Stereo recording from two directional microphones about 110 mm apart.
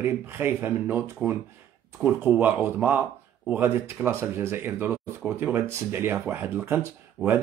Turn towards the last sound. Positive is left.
turn(degrees=-25)  # may be behind; listen again after turning